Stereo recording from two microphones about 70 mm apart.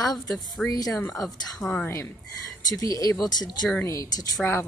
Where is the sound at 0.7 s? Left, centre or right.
Left.